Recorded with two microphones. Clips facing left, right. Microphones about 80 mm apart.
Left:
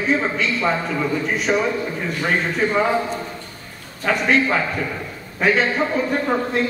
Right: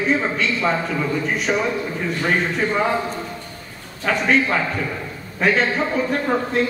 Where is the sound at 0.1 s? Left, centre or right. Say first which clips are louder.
Left 3 dB; centre.